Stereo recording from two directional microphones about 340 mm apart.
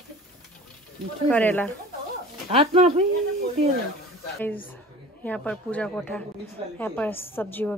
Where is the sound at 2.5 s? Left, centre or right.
Centre.